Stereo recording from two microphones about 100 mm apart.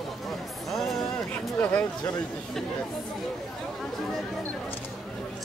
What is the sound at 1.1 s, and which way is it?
Speech, 15° left (ahead or behind).